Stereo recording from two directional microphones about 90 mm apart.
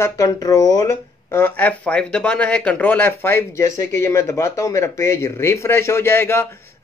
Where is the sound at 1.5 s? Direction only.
15° left (ahead or behind).